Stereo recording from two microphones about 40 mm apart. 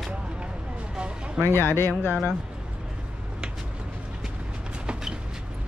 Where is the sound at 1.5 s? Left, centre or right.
Left.